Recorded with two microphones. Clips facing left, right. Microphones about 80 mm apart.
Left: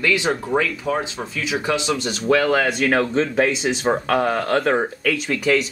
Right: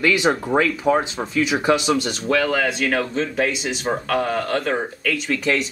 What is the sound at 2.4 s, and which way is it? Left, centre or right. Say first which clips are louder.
Speech: left 1 dB; centre.